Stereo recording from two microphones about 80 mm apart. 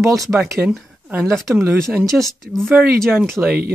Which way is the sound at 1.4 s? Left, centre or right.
Right.